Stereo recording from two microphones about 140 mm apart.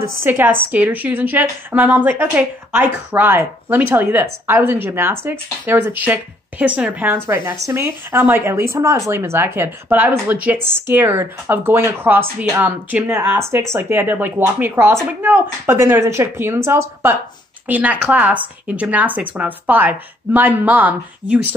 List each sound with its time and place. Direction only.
0.2 s a woman's voice: 15° right (ahead or behind)